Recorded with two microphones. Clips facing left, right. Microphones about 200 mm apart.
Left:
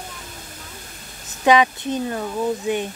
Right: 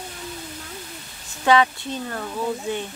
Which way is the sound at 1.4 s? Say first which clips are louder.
Left 2 dB; 15° left (ahead or behind).